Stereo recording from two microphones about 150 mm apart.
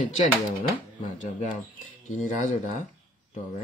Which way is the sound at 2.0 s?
55° left (ahead or behind).